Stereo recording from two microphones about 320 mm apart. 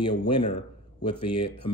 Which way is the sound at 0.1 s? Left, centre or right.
Left.